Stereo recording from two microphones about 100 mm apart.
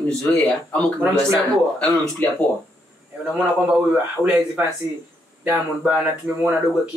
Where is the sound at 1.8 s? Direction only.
10° left (ahead or behind).